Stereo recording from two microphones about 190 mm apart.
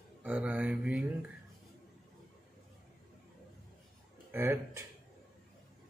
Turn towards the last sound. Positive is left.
turn(degrees=-10)  # may be behind; listen again after turning